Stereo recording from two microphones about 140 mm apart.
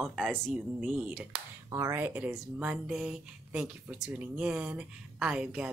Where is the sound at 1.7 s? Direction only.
20° right (ahead or behind).